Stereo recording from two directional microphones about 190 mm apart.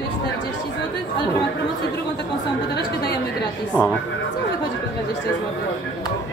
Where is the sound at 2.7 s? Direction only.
60° left (ahead or behind).